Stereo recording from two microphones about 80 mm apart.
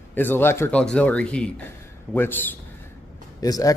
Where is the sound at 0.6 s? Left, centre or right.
Centre.